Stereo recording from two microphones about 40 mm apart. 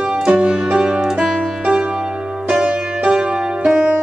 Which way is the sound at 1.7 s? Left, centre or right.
Centre.